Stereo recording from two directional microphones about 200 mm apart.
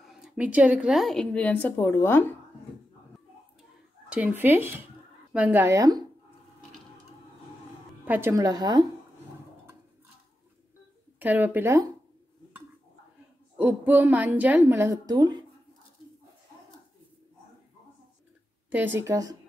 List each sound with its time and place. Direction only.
0.0 s a woman's voice: 5° right (ahead or behind)
4.1 s a woman's voice: 10° right (ahead or behind)
8.0 s a woman's voice: 10° right (ahead or behind)
11.1 s a woman's voice: 10° right (ahead or behind)
13.6 s a woman's voice: 10° right (ahead or behind)
18.7 s a woman's voice: 10° right (ahead or behind)